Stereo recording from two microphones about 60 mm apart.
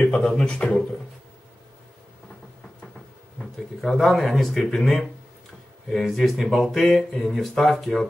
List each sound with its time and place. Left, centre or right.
0.0 s a sound: left
0.4 s speech: left
3.3 s speech: centre